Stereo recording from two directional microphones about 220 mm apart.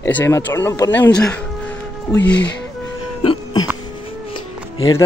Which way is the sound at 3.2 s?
20° left (ahead or behind).